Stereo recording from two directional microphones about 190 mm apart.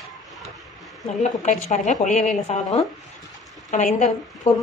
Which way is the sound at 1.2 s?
40° left (ahead or behind).